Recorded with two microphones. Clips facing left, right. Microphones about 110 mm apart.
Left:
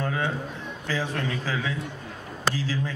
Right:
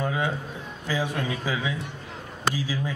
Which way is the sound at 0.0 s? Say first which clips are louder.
Right 1 dB; 15° right (ahead or behind).